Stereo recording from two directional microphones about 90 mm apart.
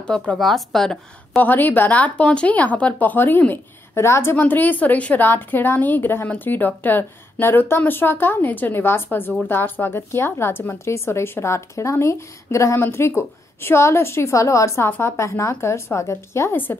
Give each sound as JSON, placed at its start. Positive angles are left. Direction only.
{"t": 0.0, "sound": "a woman's voice", "side_deg": 10}
{"t": 1.4, "sound": "speech", "side_deg": 20}